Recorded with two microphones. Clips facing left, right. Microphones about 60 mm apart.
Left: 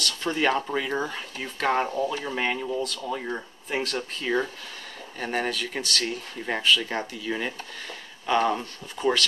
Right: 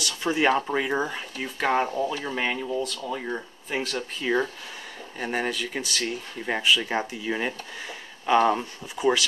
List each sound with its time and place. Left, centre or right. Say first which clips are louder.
0.0 s speech: right 2 dB; centre